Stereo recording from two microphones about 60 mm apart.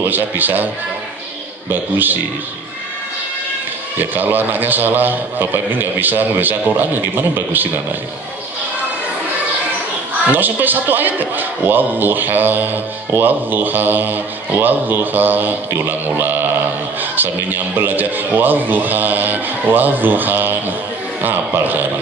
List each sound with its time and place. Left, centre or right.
0.0 s a man's voice: right
1.7 s a man's voice: right
4.0 s a man's voice: right
10.3 s a man's voice: right